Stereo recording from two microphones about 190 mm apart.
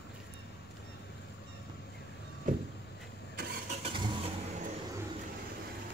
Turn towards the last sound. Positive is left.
turn(degrees=-30)  # may be behind; listen again after turning